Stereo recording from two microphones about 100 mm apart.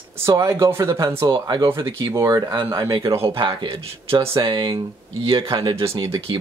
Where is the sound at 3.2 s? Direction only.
55° right (ahead or behind).